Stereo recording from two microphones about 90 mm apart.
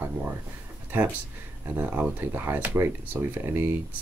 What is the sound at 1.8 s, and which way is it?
Speech, 15° right (ahead or behind).